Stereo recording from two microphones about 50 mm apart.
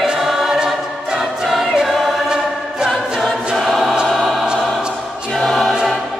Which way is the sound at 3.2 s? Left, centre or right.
Centre.